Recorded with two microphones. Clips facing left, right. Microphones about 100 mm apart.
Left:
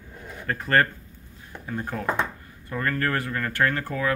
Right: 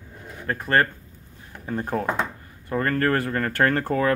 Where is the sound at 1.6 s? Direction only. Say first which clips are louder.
Right 3 dB; 35° right (ahead or behind).